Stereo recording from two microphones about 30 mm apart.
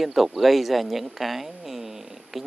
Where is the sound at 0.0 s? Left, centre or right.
Centre.